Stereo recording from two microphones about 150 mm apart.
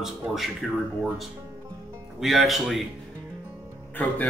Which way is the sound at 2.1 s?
Centre (ahead or behind).